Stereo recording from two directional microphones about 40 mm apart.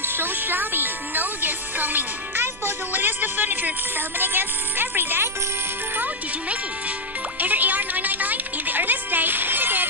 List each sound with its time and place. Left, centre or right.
0.0 s speech: right
7.3 s music: right